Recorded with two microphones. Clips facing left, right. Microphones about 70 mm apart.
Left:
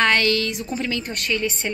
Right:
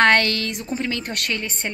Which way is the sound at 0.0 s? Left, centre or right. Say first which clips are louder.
Right 2 dB; right.